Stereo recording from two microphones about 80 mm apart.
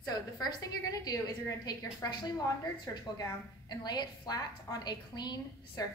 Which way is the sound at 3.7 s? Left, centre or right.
Left.